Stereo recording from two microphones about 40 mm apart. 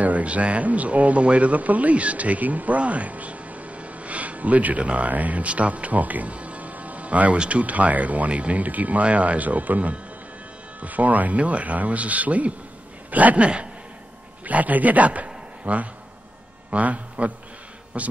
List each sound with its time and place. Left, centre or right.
0.0 s speech: right